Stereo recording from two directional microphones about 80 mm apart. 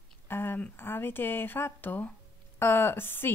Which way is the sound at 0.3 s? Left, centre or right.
Left.